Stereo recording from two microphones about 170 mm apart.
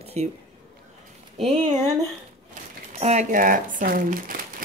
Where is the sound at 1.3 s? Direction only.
40° right (ahead or behind).